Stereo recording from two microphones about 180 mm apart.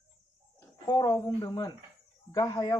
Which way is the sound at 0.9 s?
25° left (ahead or behind).